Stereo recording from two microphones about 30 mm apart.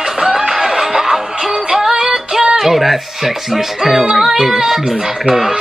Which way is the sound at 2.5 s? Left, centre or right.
Centre.